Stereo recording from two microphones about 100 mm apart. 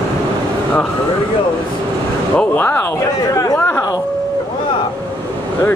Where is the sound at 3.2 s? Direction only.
40° left (ahead or behind).